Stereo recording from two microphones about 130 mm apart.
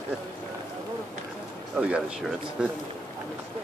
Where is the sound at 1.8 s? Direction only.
10° right (ahead or behind).